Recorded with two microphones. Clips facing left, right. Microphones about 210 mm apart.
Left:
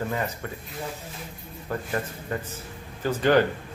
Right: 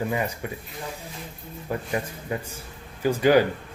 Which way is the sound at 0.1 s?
10° right (ahead or behind).